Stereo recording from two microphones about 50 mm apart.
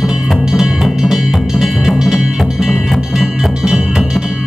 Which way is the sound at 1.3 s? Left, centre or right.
Centre.